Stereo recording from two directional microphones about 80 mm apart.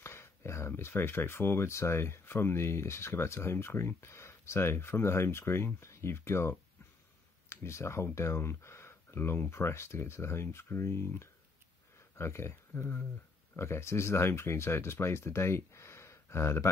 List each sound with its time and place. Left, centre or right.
0.0 s speech: left